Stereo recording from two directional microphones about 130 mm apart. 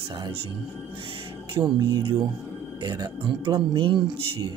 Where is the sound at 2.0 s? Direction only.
40° right (ahead or behind).